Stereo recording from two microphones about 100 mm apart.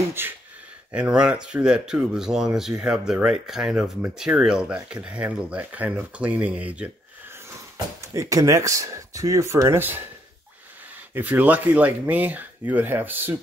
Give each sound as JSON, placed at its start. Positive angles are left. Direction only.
{"t": 0.2, "sound": "speech", "side_deg": -25}
{"t": 0.9, "sound": "speech", "side_deg": -10}
{"t": 7.7, "sound": "speech", "side_deg": -35}
{"t": 11.1, "sound": "speech", "side_deg": -15}